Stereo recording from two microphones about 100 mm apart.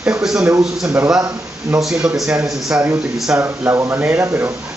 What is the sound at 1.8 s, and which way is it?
Speech, 5° right (ahead or behind).